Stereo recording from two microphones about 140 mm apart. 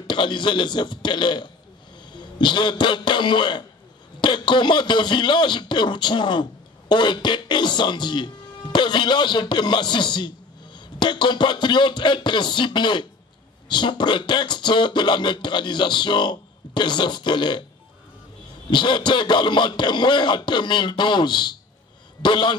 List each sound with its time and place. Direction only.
0.0 s speech: 35° left (ahead or behind)
18.7 s speech: 35° left (ahead or behind)